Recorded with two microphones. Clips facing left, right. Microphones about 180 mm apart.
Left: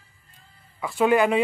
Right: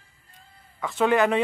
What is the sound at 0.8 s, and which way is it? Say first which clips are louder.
Speech: left 1 dB; 10° left (ahead or behind).